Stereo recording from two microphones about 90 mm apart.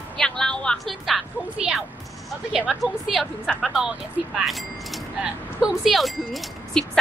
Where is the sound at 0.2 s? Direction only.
10° left (ahead or behind).